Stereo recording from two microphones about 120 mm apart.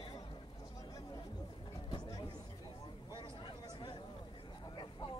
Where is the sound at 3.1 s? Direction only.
40° left (ahead or behind).